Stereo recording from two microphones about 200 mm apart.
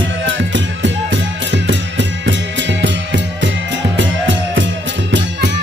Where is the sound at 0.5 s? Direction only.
65° right (ahead or behind).